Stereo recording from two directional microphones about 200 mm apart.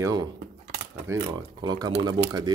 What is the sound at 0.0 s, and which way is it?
Speech, 20° right (ahead or behind).